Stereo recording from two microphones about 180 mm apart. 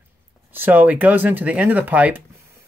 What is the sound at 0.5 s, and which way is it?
Speech, 10° right (ahead or behind).